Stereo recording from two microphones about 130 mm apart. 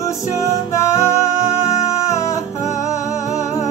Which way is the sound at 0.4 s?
20° left (ahead or behind).